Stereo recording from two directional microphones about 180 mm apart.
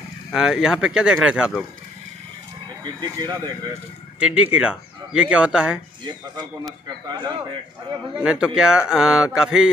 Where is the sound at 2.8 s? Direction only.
25° right (ahead or behind).